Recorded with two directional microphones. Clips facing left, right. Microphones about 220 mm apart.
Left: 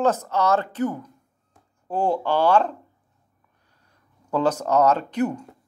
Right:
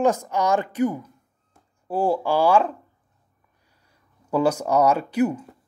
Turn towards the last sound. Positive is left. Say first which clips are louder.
# right 2 dB
turn(degrees=-10)  # may be behind; listen again after turning